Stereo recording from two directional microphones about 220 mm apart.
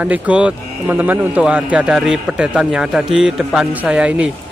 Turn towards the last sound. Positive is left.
turn(degrees=-5)  # may be behind; listen again after turning